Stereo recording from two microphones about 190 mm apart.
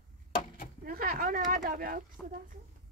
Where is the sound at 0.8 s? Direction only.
50° right (ahead or behind).